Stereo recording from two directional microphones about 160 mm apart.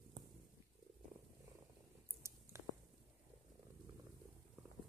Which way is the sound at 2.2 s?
15° right (ahead or behind).